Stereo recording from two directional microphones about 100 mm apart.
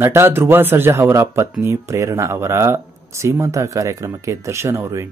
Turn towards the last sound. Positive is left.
turn(degrees=-30)  # may be behind; listen again after turning